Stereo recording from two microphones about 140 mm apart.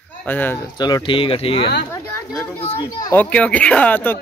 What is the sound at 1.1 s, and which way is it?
Speech, 40° left (ahead or behind).